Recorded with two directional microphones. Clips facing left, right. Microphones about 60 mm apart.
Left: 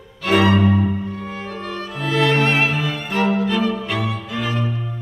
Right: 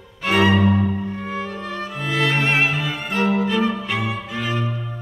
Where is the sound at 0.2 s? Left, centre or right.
Right.